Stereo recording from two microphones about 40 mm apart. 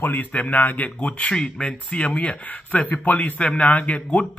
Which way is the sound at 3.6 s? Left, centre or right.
Left.